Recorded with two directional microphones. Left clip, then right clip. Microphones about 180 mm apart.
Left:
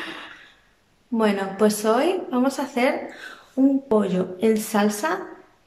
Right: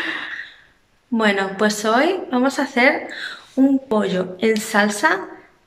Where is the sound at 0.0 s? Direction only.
Centre (ahead or behind).